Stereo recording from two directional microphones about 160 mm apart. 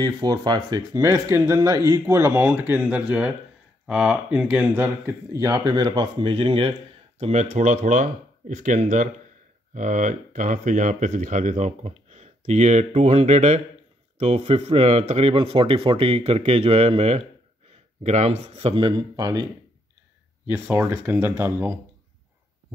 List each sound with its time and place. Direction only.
0.0 s speech: 25° right (ahead or behind); by 7.4 s 40° right (ahead or behind)
7.5 s speech: 50° right (ahead or behind); by 19.4 s 25° right (ahead or behind)
20.4 s speech: 15° right (ahead or behind)